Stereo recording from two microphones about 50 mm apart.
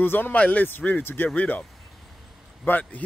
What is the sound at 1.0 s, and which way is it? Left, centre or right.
Speech, left.